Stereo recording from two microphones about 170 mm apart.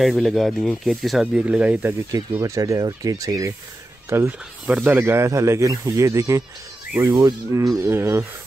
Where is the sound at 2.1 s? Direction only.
20° right (ahead or behind).